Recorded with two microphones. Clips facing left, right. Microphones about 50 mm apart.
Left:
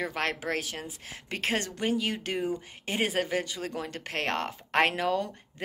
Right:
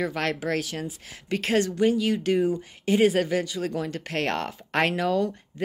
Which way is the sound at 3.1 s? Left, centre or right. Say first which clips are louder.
Right 5 dB; centre.